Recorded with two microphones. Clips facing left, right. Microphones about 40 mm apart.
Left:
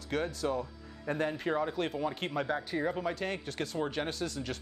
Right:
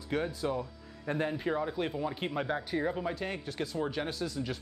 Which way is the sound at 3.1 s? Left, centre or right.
Left.